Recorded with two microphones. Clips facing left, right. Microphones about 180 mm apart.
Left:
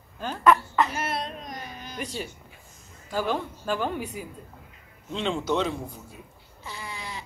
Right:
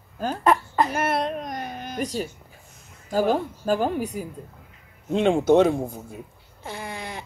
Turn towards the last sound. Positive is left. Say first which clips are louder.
# right 4 dB
turn(degrees=-55)  # may be behind; listen again after turning